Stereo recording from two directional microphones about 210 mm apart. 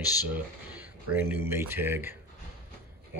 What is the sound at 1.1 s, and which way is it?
Speech, 10° right (ahead or behind).